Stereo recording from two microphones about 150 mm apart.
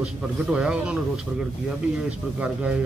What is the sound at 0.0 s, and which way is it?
Speech, 5° right (ahead or behind).